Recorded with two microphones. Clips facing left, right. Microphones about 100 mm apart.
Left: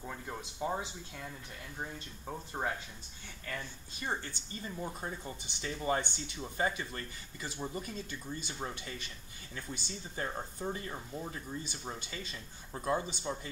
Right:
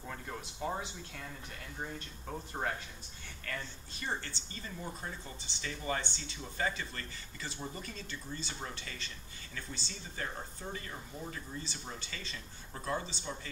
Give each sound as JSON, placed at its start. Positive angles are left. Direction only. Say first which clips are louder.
{"t": 0.0, "sound": "speech", "louder": "left 1 dB", "side_deg": 10}
{"t": 1.8, "sound": "speech", "louder": "even", "side_deg": 10}
{"t": 4.0, "sound": "speech", "louder": "left 1 dB", "side_deg": 15}